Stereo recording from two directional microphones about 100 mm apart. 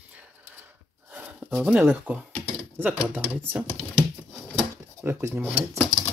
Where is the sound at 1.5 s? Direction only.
10° right (ahead or behind).